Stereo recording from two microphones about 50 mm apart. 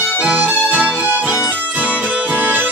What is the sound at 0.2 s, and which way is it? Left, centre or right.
Music, right.